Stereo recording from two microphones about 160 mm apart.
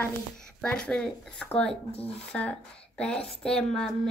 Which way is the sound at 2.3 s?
5° left (ahead or behind).